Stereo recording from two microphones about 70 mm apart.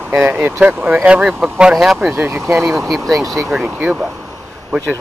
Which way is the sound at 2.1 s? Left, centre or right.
Right.